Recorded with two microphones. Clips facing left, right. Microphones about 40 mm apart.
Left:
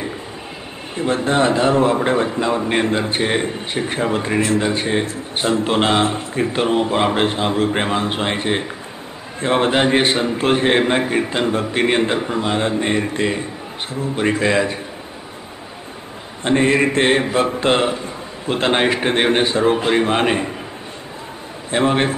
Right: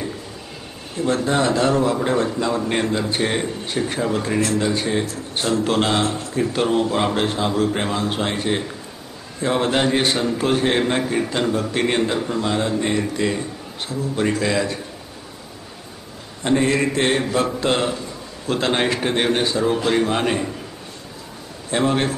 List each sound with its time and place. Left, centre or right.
0.9 s a man's voice: left
16.4 s speech: left
21.6 s a man's voice: left